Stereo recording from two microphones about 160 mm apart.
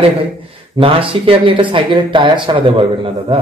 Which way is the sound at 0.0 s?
35° right (ahead or behind).